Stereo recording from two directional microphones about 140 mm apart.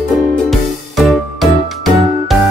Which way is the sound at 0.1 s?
Centre (ahead or behind).